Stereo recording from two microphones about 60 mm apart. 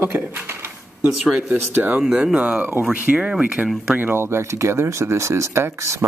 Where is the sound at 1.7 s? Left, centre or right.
Right.